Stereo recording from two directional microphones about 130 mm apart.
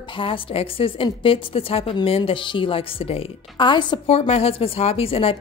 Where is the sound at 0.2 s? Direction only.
45° left (ahead or behind).